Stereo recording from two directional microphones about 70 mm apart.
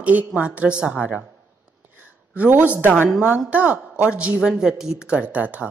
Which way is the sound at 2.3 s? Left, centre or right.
Right.